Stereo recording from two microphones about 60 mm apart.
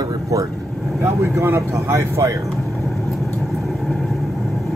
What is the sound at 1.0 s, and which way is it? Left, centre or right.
Speech, right.